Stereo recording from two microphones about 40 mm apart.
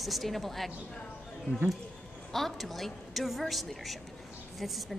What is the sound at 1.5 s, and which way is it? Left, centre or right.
Speech, left.